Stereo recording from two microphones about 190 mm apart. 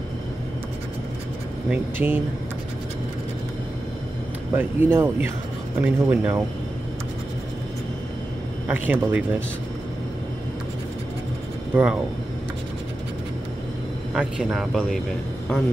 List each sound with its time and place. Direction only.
1.7 s speech: 10° right (ahead or behind)
4.6 s speech: 10° right (ahead or behind)
8.6 s speech: 10° right (ahead or behind)
11.7 s speech: 5° right (ahead or behind)
14.1 s speech: 5° right (ahead or behind)